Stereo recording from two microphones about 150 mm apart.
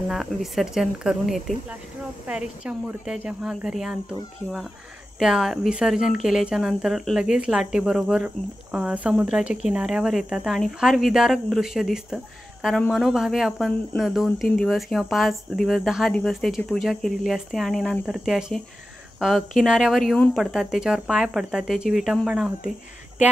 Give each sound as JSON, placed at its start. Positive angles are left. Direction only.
{"t": 0.1, "sound": "speech", "side_deg": 0}
{"t": 5.2, "sound": "speech", "side_deg": -5}